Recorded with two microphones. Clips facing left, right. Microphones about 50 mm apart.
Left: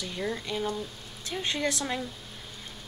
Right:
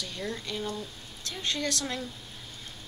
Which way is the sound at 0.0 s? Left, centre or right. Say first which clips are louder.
Left 3 dB; centre.